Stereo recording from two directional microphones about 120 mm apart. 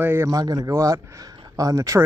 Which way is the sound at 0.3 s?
30° right (ahead or behind).